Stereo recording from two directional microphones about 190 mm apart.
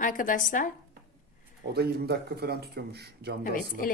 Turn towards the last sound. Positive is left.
turn(degrees=45)  # may be behind; listen again after turning